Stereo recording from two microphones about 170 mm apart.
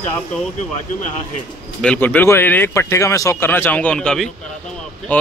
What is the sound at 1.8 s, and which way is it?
A man's voice, 10° left (ahead or behind).